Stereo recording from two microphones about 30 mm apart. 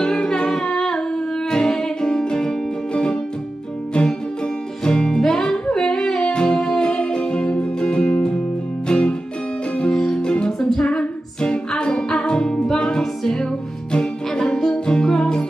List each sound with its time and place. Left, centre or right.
0.0 s humming: left
0.7 s music: left
4.8 s music: left
5.8 s yodeling: left
6.2 s music: left
6.9 s music: left
9.8 s music: centre
10.8 s music: left
14.5 s music: left